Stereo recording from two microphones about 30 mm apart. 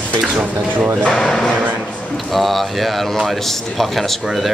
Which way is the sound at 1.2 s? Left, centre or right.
Centre.